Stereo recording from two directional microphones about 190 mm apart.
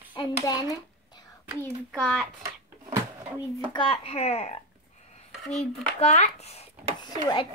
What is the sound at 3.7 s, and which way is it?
Speech, 25° left (ahead or behind).